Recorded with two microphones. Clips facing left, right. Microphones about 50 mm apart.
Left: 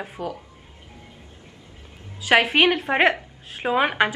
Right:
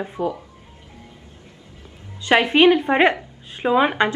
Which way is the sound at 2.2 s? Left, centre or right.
Centre.